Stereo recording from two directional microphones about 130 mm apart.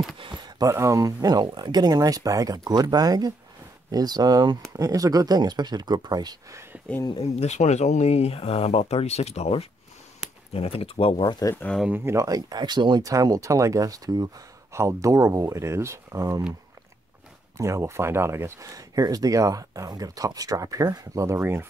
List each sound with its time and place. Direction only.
0.2 s speech: 30° right (ahead or behind)
7.2 s speech: 55° left (ahead or behind)
11.5 s speech: 10° left (ahead or behind)
11.9 s speech: 20° right (ahead or behind)
17.6 s speech: 25° right (ahead or behind)